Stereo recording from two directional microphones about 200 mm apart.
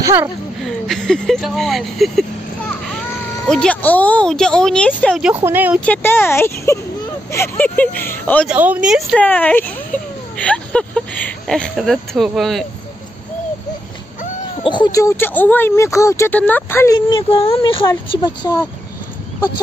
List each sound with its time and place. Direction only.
0.0 s a woman's voice: 15° right (ahead or behind)
0.7 s speech: centre (ahead or behind)
3.4 s speech: 5° left (ahead or behind)
5.3 s speech: 10° right (ahead or behind)
5.9 s speech: 10° left (ahead or behind)
8.5 s speech: 5° right (ahead or behind)
9.2 s speech: 10° left (ahead or behind)
14.6 s speech: 25° left (ahead or behind)